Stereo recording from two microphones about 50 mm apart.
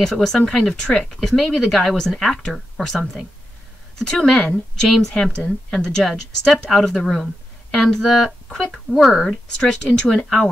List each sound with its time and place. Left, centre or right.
0.0 s a woman's voice: centre
5.1 s a woman's voice: centre
9.6 s a woman's voice: centre